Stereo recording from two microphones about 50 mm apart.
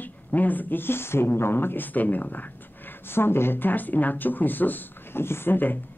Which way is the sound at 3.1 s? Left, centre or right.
Left.